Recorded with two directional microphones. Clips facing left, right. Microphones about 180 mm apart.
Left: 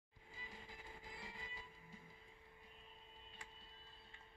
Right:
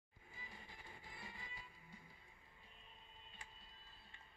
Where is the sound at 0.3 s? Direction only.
90° left.